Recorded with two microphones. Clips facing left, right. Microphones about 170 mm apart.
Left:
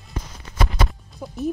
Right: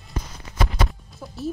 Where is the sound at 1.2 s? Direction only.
10° left (ahead or behind).